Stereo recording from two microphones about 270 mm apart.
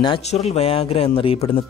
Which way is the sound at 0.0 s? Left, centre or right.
Left.